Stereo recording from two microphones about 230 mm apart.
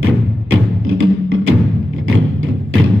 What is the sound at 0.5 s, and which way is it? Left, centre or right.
Music, right.